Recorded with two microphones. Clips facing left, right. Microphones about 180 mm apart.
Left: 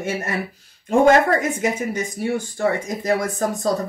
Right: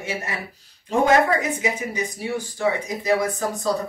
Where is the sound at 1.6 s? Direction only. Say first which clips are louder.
Left 3 dB; 50° left (ahead or behind).